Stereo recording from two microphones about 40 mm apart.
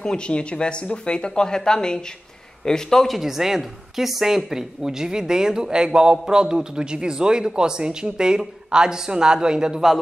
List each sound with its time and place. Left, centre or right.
0.0 s speech: left
3.1 s speech: centre